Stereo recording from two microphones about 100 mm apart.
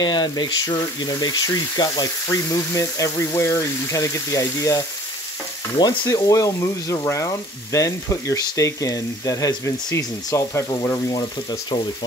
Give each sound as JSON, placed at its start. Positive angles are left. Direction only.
{"t": 0.0, "sound": "speech", "side_deg": 50}